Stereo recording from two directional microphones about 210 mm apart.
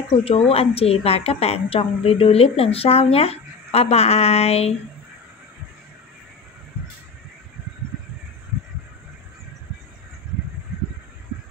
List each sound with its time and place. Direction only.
0.2 s a woman's voice: 30° left (ahead or behind)